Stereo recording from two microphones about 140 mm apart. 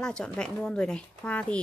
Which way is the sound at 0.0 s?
5° left (ahead or behind).